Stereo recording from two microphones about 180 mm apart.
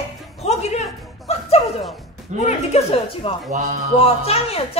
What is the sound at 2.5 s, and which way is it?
Speech, 35° left (ahead or behind).